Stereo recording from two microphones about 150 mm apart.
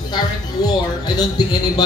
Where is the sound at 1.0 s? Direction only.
25° left (ahead or behind).